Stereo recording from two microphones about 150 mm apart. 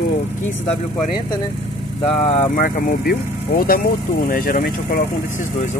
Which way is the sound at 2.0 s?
45° left (ahead or behind).